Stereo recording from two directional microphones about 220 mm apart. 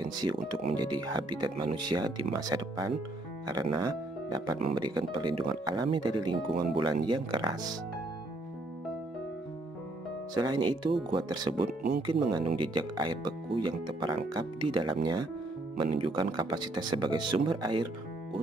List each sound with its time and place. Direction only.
0.2 s speech: 25° right (ahead or behind)
10.3 s speech: 20° right (ahead or behind)
16.1 s speech: 20° right (ahead or behind)